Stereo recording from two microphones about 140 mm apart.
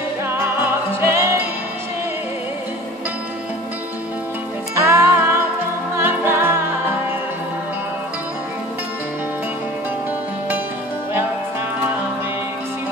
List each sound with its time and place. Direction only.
1.0 s music: 15° right (ahead or behind)
4.7 s music: 20° right (ahead or behind)